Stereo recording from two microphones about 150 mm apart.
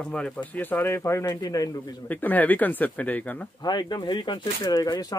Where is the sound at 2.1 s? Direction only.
10° left (ahead or behind).